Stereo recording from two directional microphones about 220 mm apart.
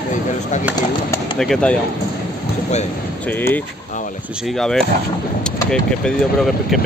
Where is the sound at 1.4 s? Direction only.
5° left (ahead or behind).